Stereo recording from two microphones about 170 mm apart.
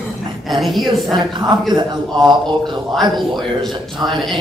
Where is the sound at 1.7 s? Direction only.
30° right (ahead or behind).